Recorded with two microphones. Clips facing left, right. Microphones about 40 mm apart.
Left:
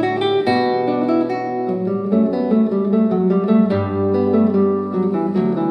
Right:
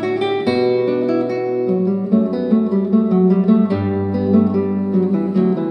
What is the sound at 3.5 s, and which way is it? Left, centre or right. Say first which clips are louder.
Music: left 1 dB; centre.